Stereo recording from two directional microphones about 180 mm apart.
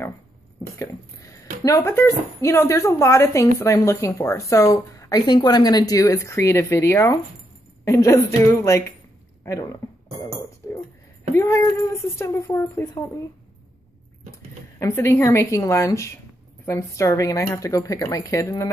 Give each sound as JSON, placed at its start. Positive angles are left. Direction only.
{"t": 1.6, "sound": "speech", "side_deg": 15}
{"t": 10.6, "sound": "beatboxing", "side_deg": 15}
{"t": 11.3, "sound": "speech", "side_deg": 15}
{"t": 14.8, "sound": "speech", "side_deg": 15}